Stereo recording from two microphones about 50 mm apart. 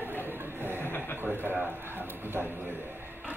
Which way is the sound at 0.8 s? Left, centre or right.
Left.